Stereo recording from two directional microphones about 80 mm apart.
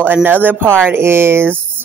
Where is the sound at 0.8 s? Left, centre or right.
Right.